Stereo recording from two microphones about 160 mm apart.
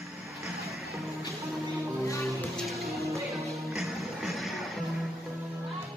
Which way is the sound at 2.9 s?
20° right (ahead or behind).